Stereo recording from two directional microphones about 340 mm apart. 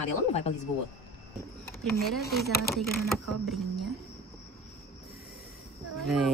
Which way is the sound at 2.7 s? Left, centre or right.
Centre.